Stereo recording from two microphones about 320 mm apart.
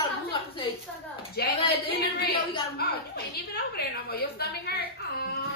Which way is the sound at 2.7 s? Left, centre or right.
Left.